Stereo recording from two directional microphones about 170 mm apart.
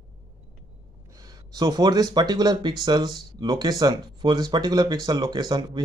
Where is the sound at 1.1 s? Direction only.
20° right (ahead or behind).